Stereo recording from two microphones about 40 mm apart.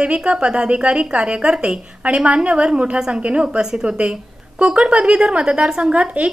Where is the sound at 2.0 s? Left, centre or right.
Right.